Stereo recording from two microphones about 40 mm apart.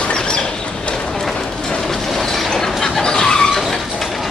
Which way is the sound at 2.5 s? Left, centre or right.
Centre.